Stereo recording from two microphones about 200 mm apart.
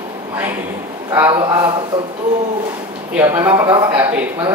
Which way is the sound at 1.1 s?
15° right (ahead or behind).